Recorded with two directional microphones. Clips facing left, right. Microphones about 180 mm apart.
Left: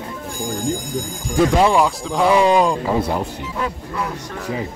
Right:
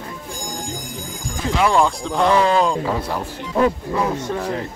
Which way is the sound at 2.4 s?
15° left (ahead or behind).